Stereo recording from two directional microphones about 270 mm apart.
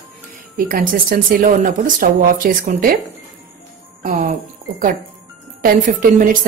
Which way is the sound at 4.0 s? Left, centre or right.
Right.